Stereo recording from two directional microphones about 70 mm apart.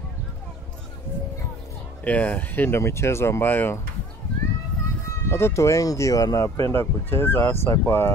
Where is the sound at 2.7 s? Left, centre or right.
Left.